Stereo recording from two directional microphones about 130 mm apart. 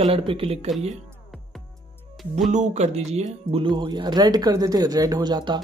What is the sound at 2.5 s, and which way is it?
Speech, 60° right (ahead or behind).